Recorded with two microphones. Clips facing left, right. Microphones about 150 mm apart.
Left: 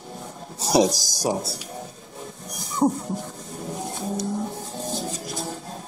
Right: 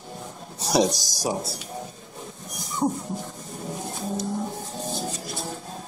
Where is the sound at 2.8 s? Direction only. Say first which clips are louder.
Left 4 dB; 25° left (ahead or behind).